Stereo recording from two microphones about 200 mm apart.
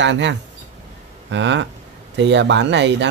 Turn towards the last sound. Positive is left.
turn(degrees=-60)  # may be behind; listen again after turning